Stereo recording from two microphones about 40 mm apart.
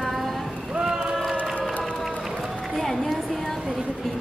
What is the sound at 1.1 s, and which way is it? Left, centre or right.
Run, centre.